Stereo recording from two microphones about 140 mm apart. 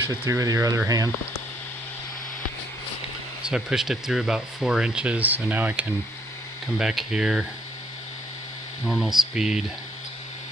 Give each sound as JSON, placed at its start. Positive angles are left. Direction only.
{"t": 0.0, "sound": "speech", "side_deg": -20}
{"t": 3.4, "sound": "speech", "side_deg": -5}
{"t": 8.8, "sound": "speech", "side_deg": 0}